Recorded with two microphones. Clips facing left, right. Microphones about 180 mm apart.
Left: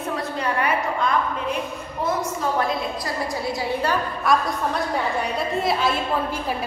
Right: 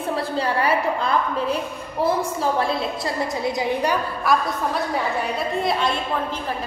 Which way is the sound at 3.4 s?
20° right (ahead or behind).